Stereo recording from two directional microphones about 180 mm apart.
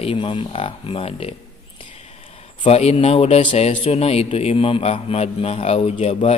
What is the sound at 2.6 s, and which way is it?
A man's voice, 35° left (ahead or behind).